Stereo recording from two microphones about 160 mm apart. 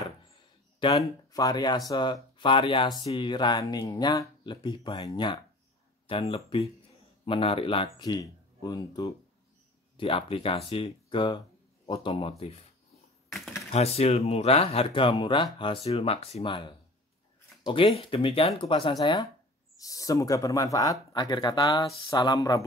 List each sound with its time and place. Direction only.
0.7 s speech: 25° left (ahead or behind)
9.9 s speech: 35° left (ahead or behind)
13.7 s speech: 40° left (ahead or behind); by 22.7 s 20° left (ahead or behind)